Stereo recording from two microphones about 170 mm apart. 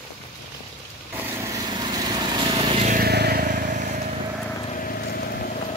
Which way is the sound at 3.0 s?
70° right (ahead or behind).